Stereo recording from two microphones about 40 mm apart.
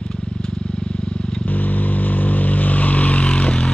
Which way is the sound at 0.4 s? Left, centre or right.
Left.